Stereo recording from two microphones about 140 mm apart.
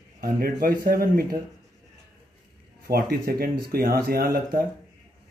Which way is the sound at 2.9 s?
90° right.